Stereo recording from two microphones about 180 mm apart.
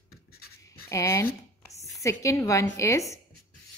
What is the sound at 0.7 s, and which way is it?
Writing, 15° left (ahead or behind).